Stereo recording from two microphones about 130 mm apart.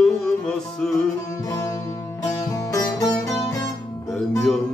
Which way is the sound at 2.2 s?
30° left (ahead or behind).